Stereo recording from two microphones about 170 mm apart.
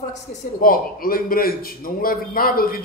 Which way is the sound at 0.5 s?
60° left (ahead or behind).